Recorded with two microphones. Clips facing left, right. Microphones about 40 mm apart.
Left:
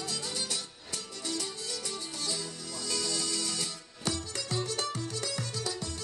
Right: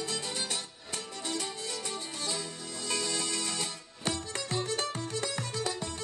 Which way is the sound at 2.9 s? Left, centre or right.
Right.